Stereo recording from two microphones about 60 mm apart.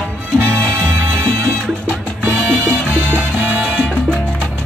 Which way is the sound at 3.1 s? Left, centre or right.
Right.